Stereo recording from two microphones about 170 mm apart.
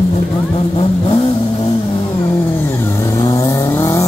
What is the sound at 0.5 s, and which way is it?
Vehicle, 30° left (ahead or behind).